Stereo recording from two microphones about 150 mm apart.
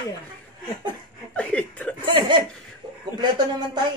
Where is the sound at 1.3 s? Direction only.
10° left (ahead or behind).